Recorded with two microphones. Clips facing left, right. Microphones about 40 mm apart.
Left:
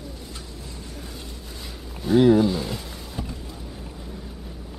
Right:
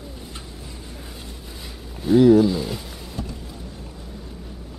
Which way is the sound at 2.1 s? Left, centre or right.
Centre.